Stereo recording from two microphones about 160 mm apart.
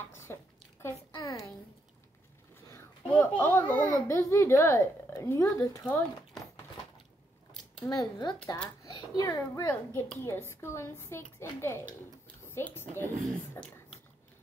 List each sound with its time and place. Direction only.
0.3 s squish: 15° left (ahead or behind)
1.1 s a sound: 20° left (ahead or behind)
2.7 s a child's voice: 15° left (ahead or behind)
7.8 s speech: 25° left (ahead or behind)
8.8 s a sound: 25° left (ahead or behind)
9.6 s a woman's voice: 25° left (ahead or behind)